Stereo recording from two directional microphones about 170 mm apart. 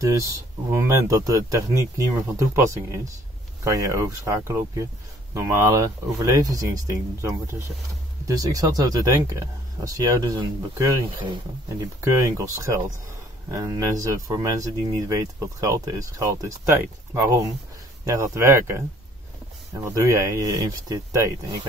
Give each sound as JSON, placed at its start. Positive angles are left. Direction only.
{"t": 0.0, "sound": "speech", "side_deg": -20}
{"t": 19.8, "sound": "speech", "side_deg": -15}